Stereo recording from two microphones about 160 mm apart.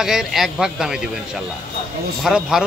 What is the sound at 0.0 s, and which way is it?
A man's voice, 5° right (ahead or behind).